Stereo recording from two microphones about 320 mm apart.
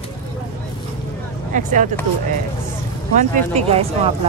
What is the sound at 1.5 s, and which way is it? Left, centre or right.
Speech, right.